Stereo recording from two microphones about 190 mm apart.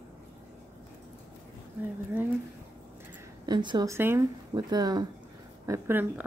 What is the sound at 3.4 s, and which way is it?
Speech, 25° right (ahead or behind).